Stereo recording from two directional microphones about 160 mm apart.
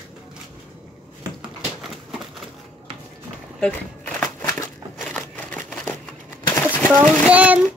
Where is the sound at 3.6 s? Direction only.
10° left (ahead or behind).